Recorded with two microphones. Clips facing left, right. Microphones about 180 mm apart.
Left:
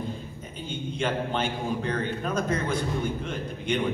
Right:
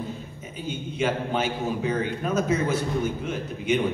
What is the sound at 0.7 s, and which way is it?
A man's voice, 5° right (ahead or behind).